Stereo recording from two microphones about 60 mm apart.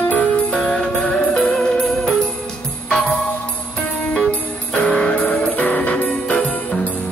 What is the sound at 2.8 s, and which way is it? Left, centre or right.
Music, centre.